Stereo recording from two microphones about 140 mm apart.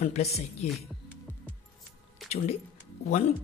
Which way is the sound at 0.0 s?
50° left (ahead or behind).